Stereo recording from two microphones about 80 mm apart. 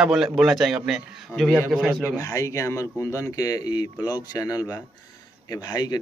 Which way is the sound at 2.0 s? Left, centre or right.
Left.